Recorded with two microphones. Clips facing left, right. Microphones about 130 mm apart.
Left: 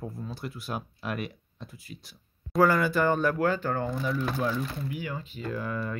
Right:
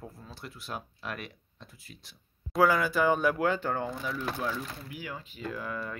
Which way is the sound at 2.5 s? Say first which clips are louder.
Left 2 dB; 5° right (ahead or behind).